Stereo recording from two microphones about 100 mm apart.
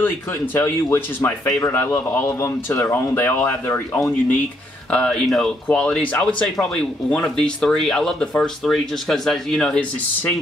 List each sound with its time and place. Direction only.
0.6 s speech: 20° left (ahead or behind)
4.9 s speech: 10° left (ahead or behind)